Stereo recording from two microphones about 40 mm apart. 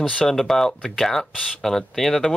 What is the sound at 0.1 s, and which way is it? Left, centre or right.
Speech, left.